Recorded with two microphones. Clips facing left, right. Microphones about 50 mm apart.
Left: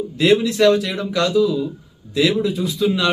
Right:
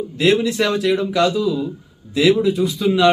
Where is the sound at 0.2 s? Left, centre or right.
Centre.